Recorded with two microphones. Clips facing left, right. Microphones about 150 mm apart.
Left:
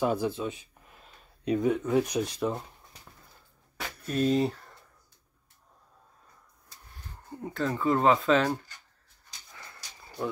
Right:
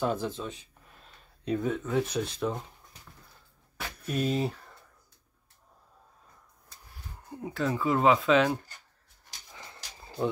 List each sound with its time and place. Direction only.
0.0 s speech: 10° left (ahead or behind)
4.1 s speech: 5° right (ahead or behind)
7.2 s speech: 5° right (ahead or behind)
9.5 s dog: 20° right (ahead or behind)